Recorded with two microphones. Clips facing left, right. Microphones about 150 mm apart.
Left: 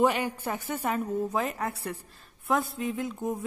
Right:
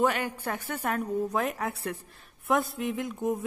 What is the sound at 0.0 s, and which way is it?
A woman's voice, 10° left (ahead or behind).